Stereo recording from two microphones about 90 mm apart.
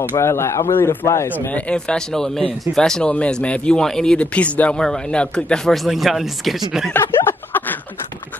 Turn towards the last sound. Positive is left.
turn(degrees=20)  # may be behind; listen again after turning